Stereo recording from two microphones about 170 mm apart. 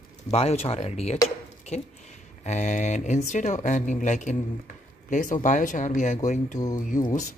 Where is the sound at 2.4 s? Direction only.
45° left (ahead or behind).